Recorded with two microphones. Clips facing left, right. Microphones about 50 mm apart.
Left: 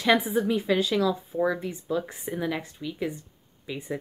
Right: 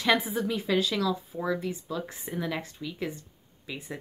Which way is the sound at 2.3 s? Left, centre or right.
Centre.